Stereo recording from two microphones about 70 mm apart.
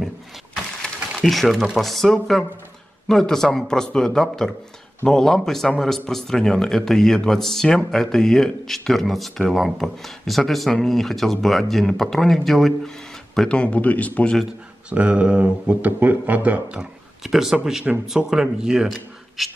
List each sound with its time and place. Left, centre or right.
0.8 s speech: centre; by 14.3 s left
14.9 s speech: centre
17.2 s speech: centre